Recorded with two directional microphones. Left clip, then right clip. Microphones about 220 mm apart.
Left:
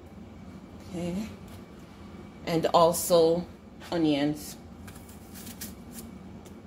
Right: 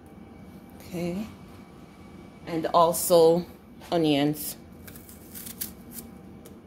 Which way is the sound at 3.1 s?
30° right (ahead or behind).